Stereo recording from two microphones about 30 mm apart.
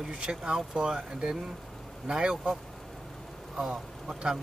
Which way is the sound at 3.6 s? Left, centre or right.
Centre.